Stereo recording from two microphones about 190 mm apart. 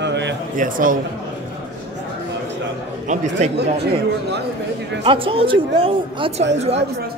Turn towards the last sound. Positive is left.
turn(degrees=-35)  # may be behind; listen again after turning